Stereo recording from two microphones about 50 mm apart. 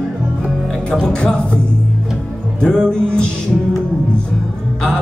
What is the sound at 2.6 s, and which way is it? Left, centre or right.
Music, centre.